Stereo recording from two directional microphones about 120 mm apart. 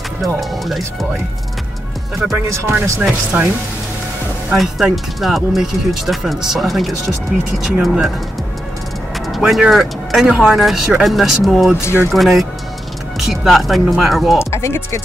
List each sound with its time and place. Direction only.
0.2 s speech: centre (ahead or behind)
2.7 s speech: 15° right (ahead or behind)
4.5 s speech: 5° right (ahead or behind)
9.3 s speech: 5° right (ahead or behind)
11.8 s speech: 20° left (ahead or behind)
12.1 s speech: centre (ahead or behind)
14.4 s speech: 20° left (ahead or behind)